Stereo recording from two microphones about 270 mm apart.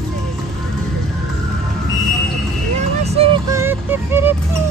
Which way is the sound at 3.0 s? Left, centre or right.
Right.